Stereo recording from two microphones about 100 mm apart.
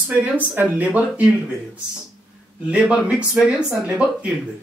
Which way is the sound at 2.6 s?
10° right (ahead or behind).